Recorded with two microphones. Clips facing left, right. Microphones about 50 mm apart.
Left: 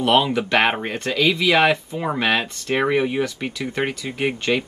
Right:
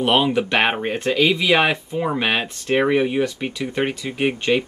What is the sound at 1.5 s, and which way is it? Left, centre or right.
Speech, centre.